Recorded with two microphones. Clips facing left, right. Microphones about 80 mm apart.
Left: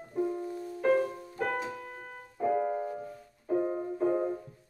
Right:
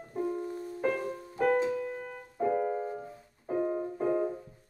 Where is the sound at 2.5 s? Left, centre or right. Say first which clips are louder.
Left 2 dB; centre.